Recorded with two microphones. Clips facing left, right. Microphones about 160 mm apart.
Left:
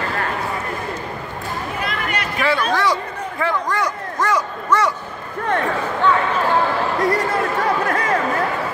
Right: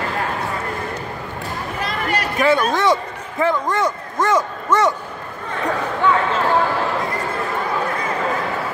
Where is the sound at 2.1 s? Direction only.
40° right (ahead or behind).